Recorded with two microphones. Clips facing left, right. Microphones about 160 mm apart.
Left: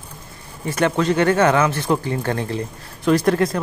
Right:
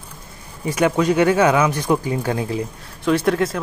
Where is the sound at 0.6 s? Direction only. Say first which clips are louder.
Right 1 dB; 10° right (ahead or behind).